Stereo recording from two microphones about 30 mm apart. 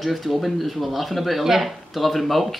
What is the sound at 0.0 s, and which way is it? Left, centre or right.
Speech, centre.